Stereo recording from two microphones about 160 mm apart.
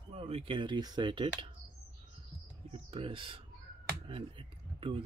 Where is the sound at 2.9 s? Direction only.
35° right (ahead or behind).